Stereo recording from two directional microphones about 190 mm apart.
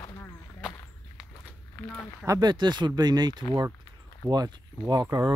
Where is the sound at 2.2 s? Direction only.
20° right (ahead or behind).